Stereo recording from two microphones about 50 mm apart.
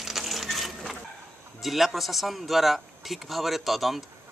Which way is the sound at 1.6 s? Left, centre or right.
Centre.